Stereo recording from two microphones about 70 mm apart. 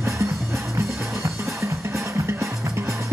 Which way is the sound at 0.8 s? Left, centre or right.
Right.